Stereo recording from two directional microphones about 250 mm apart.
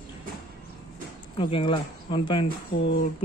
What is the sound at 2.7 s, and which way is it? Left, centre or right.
Speech, left.